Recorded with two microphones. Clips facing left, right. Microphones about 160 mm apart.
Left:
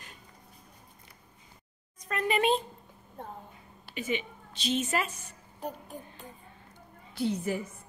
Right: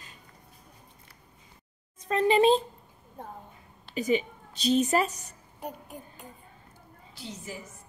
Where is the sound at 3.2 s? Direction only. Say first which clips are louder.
Even; 15° right (ahead or behind).